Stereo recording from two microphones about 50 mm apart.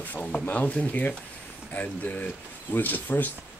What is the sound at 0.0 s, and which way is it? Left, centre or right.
Speech, left.